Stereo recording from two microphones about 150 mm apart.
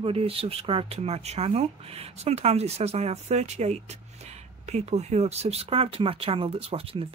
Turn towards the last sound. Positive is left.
turn(degrees=-40)  # may be behind; listen again after turning